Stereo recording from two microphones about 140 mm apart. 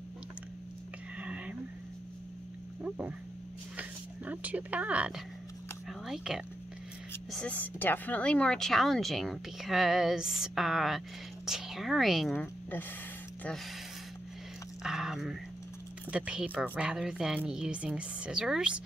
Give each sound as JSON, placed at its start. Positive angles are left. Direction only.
{"t": 1.1, "sound": "whispering", "side_deg": -10}
{"t": 2.8, "sound": "music", "side_deg": -10}
{"t": 3.7, "sound": "speech", "side_deg": -10}
{"t": 5.9, "sound": "a sound", "side_deg": -5}
{"t": 7.2, "sound": "speech", "side_deg": 5}
{"t": 14.8, "sound": "speech", "side_deg": -5}